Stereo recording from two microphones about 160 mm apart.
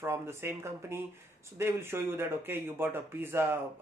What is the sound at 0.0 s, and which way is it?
Speech, 15° right (ahead or behind).